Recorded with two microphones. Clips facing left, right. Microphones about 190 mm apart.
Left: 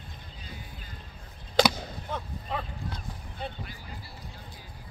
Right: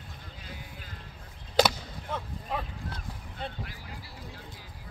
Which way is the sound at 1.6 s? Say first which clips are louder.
Left 1 dB; 5° right (ahead or behind).